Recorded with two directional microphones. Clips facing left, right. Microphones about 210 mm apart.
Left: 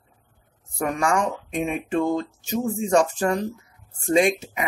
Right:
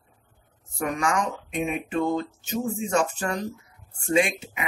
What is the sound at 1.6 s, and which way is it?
Speech, 35° left (ahead or behind).